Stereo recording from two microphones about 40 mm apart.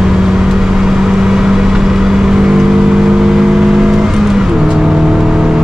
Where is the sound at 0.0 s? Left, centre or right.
Centre.